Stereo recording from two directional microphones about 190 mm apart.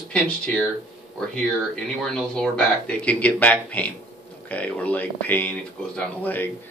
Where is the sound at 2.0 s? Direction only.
5° left (ahead or behind).